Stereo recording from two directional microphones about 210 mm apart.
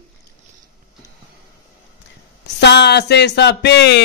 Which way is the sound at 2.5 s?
55° left (ahead or behind).